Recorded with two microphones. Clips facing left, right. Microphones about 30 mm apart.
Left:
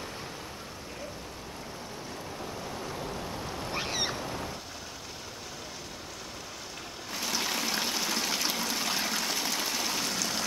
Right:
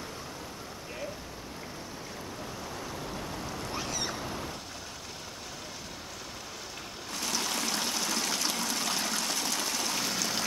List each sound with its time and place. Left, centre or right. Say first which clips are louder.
2.7 s waves: left 2 dB; centre
3.7 s a sound: left 4 dB; left
4.2 s boat: left 1 dB; centre
7.2 s stream: left 1 dB; centre